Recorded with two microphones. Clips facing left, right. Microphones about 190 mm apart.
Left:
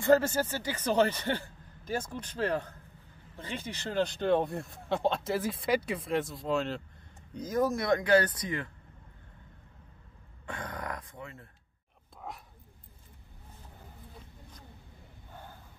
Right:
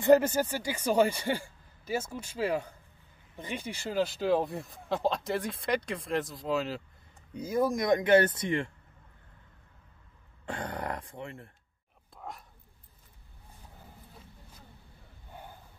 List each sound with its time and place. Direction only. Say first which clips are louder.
0.0 s speech: right 2 dB; 15° right (ahead or behind)
10.4 s speech: right 3 dB; 30° right (ahead or behind)